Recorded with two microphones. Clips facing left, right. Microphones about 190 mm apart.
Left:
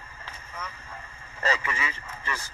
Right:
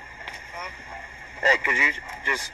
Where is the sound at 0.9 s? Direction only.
15° right (ahead or behind).